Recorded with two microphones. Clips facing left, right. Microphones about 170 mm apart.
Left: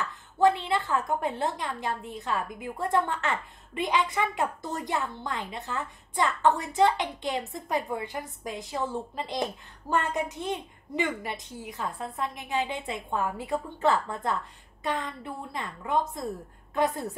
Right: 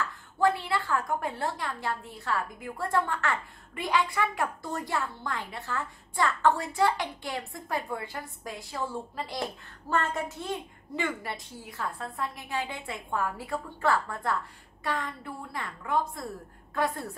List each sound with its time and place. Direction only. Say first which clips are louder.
0.0 s a woman's voice: left 3 dB; 20° left (ahead or behind)